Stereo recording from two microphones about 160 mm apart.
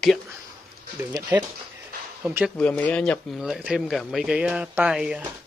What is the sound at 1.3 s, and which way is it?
Speech, 15° right (ahead or behind).